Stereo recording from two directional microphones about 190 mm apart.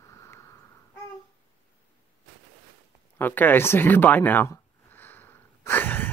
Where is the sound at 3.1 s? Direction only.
10° left (ahead or behind).